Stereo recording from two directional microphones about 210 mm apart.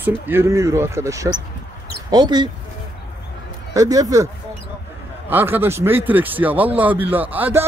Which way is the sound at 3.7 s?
15° right (ahead or behind).